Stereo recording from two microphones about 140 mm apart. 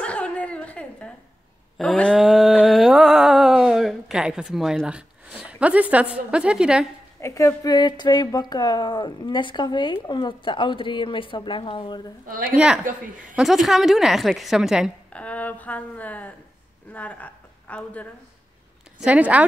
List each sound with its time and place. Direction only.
0.0 s a sound: 10° left (ahead or behind)
7.2 s speech: 20° left (ahead or behind); by 12.0 s 35° left (ahead or behind)
12.4 s a woman's voice: 5° right (ahead or behind)
15.1 s a woman's voice: 10° left (ahead or behind)
18.9 s speech: 10° right (ahead or behind)